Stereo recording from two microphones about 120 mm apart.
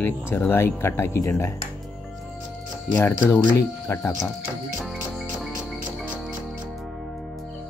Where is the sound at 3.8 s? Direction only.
20° left (ahead or behind).